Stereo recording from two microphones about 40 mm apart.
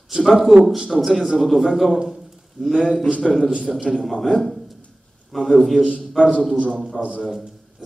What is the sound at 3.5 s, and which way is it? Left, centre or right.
Speech, centre.